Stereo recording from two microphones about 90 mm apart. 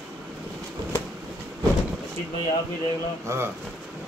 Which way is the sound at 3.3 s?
35° right (ahead or behind).